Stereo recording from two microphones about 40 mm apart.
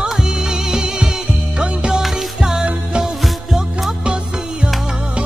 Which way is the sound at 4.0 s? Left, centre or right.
Right.